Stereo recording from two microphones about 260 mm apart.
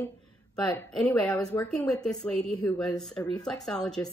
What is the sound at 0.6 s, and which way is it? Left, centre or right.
Speech, centre.